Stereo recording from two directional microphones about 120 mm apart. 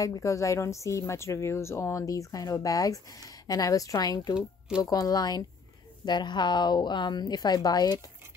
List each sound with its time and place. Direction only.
0.0 s speech: 25° left (ahead or behind)
4.4 s speech: 5° right (ahead or behind)
4.8 s a woman's voice: 30° left (ahead or behind)